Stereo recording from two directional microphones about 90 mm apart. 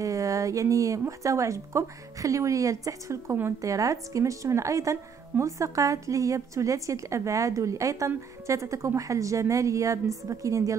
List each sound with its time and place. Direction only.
0.0 s speech: 40° right (ahead or behind)